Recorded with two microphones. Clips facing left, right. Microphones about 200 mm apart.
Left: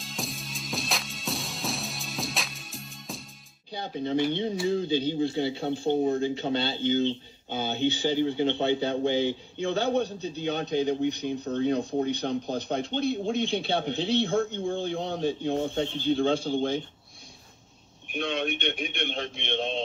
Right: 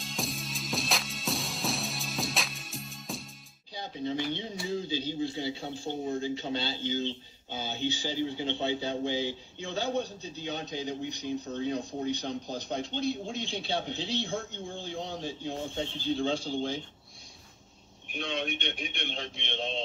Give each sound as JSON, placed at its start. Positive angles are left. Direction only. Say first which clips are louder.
{"t": 0.0, "sound": "music", "louder": "even", "side_deg": 0}
{"t": 3.7, "sound": "speech", "louder": "left 5 dB", "side_deg": 60}
{"t": 18.0, "sound": "speech", "louder": "left 5 dB", "side_deg": 60}